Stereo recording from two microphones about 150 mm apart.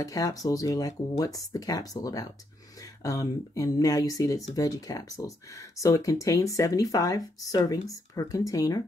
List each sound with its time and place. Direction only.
0.0 s speech: 25° left (ahead or behind)